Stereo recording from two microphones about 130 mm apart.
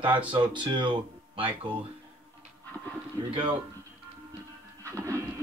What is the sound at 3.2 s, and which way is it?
Speech, 35° right (ahead or behind).